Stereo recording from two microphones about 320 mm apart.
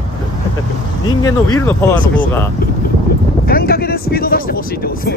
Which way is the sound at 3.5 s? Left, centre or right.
Left.